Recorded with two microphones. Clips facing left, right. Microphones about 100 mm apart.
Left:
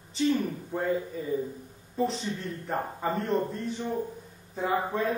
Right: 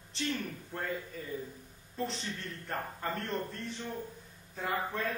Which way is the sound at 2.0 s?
5° left (ahead or behind).